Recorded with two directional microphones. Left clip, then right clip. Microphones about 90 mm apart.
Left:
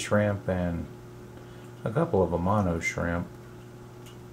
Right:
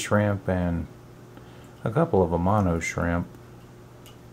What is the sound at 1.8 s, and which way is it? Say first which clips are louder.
Speech: right 3 dB; 40° right (ahead or behind).